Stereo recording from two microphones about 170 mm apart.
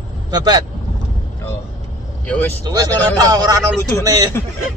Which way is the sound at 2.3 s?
10° left (ahead or behind).